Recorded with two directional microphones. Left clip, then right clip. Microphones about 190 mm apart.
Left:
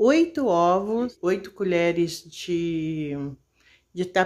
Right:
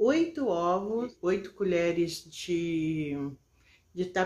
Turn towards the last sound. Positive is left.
turn(degrees=30)  # may be behind; listen again after turning